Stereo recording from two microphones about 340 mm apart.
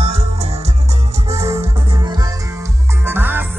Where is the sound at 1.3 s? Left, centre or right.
Centre.